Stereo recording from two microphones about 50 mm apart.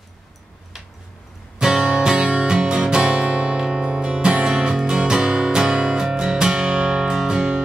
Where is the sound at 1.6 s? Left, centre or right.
Centre.